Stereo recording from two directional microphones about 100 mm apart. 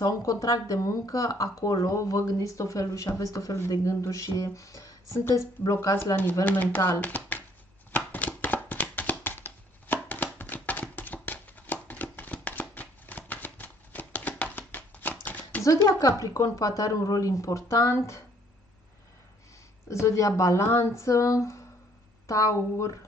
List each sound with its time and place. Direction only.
0.0 s a woman's voice: 35° left (ahead or behind); by 7.4 s 20° left (ahead or behind)
7.9 s a sound: 15° left (ahead or behind)
15.9 s speech: 30° left (ahead or behind)
19.9 s a woman's voice: 30° left (ahead or behind)